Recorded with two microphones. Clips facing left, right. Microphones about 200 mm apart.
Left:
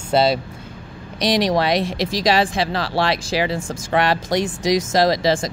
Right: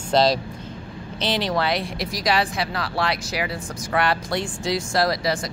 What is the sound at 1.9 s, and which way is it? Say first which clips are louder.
Speech: left 6 dB; 90° left.